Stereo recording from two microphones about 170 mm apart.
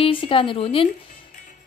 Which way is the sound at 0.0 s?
30° left (ahead or behind).